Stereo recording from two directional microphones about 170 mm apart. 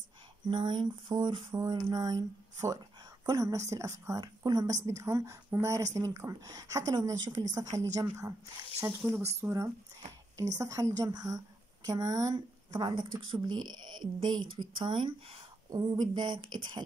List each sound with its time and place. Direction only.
0.5 s speech: 25° right (ahead or behind)